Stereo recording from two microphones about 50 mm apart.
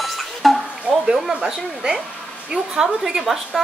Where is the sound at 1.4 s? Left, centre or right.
Centre.